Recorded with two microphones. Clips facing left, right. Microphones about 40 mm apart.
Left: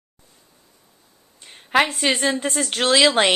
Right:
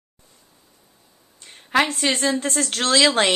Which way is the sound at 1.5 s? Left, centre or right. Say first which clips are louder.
Left 1 dB; centre.